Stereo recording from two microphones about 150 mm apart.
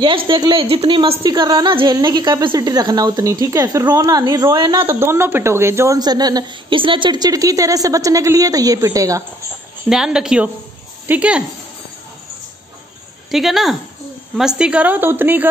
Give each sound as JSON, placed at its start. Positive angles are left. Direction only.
{"t": 0.0, "sound": "a woman's voice", "side_deg": -35}
{"t": 4.8, "sound": "a woman's voice", "side_deg": -15}
{"t": 9.8, "sound": "a woman's voice", "side_deg": -5}
{"t": 13.3, "sound": "a woman's voice", "side_deg": 0}